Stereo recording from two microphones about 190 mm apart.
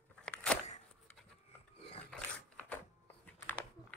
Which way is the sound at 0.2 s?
5° left (ahead or behind).